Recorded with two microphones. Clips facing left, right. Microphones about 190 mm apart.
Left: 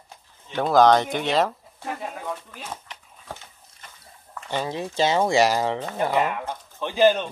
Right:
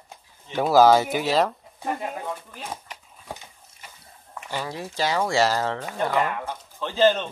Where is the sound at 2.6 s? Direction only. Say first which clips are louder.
Right 2 dB; 10° right (ahead or behind).